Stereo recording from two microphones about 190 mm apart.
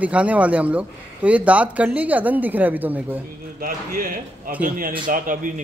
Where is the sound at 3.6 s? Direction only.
45° right (ahead or behind).